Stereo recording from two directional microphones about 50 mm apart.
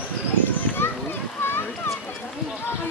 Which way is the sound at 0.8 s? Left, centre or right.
Left.